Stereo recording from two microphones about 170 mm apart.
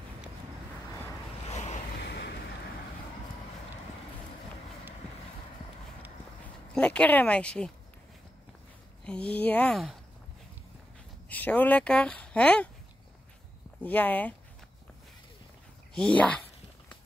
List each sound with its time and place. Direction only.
1.5 s waves: 40° left (ahead or behind)
2.0 s waves: 75° left (ahead or behind)
6.7 s speech: 5° left (ahead or behind)
9.0 s speech: 5° left (ahead or behind)
11.2 s speech: 10° left (ahead or behind)
13.8 s speech: 10° left (ahead or behind)
15.9 s speech: 5° left (ahead or behind)